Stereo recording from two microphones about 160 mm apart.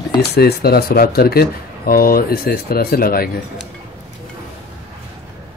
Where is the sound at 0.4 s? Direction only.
80° left.